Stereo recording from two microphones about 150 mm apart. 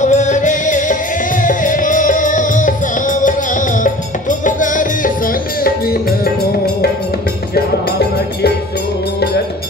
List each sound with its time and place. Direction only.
0.0 s music: 55° left (ahead or behind); by 6.3 s 90° left